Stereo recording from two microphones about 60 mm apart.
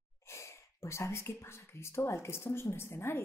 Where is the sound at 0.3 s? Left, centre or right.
Left.